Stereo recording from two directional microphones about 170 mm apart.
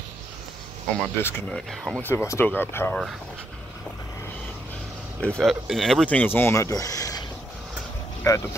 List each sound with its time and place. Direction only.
1.1 s speech: 10° left (ahead or behind)
1.7 s speech: centre (ahead or behind)
2.0 s speech: 15° left (ahead or behind)
5.2 s speech: 5° left (ahead or behind); by 7.2 s 20° left (ahead or behind)
8.3 s speech: 20° left (ahead or behind)